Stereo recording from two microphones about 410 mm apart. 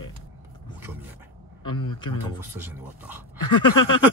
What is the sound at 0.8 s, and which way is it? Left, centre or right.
Speech, centre.